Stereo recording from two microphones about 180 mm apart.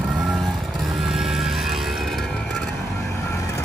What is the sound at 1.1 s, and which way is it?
Music, 5° right (ahead or behind).